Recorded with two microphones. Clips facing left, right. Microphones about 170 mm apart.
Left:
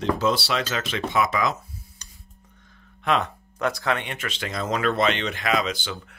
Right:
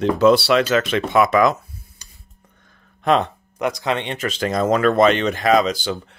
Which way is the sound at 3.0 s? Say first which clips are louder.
Right 6 dB; 35° right (ahead or behind).